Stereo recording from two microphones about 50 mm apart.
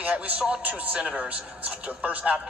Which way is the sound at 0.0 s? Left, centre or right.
Right.